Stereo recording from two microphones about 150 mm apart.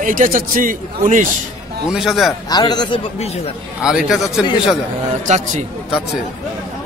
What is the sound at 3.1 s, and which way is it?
Speech, 45° left (ahead or behind).